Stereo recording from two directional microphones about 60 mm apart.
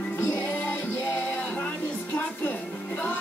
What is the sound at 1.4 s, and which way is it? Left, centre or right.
Music, left.